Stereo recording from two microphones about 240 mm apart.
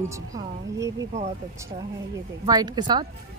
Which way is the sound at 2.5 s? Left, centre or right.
Centre.